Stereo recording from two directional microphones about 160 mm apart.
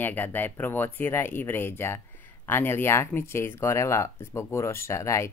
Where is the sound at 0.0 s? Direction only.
10° left (ahead or behind).